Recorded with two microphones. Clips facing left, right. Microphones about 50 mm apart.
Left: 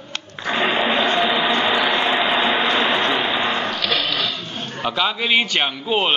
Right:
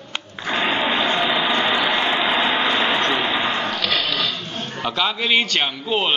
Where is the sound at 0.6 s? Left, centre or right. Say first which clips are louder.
Left 2 dB; centre.